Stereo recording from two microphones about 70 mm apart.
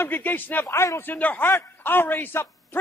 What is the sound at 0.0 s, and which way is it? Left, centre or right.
Speech, left.